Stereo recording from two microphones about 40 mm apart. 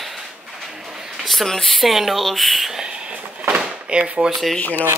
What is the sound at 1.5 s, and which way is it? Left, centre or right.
Mantra, centre.